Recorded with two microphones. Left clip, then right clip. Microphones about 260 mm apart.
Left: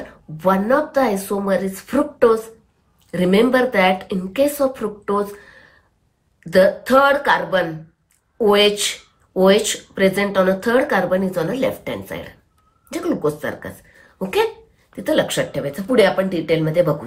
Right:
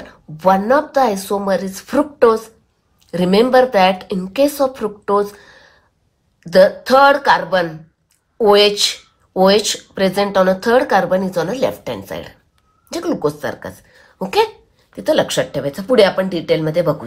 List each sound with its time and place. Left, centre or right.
0.4 s speech: centre
6.4 s a woman's voice: centre